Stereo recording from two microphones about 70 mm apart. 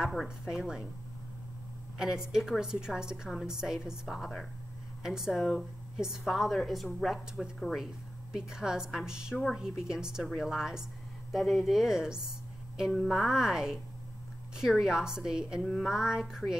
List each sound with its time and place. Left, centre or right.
0.0 s a woman's voice: centre
2.0 s a woman's voice: centre